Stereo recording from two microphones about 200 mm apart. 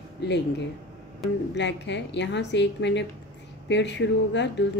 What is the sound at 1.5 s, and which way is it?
A woman's voice, 60° left (ahead or behind).